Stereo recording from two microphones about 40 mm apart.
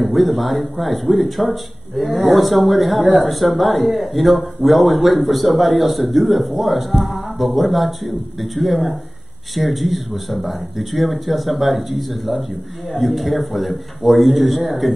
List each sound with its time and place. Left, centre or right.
0.0 s speech: centre